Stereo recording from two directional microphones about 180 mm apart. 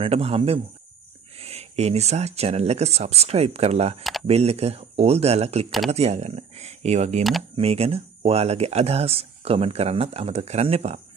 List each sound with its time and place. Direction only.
0.0 s speech: 35° right (ahead or behind)